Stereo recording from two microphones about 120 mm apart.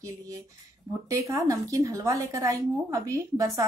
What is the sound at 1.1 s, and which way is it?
A woman's voice, 25° right (ahead or behind).